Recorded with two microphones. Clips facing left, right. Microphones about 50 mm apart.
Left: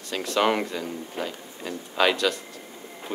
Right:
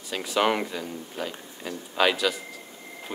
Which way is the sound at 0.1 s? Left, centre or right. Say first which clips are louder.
Left 1 dB; centre.